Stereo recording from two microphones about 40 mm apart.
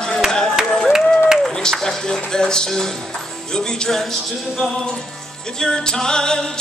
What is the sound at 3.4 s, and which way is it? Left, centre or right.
Music, centre.